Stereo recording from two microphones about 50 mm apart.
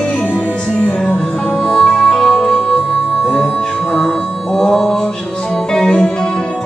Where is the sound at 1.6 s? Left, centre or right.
Centre.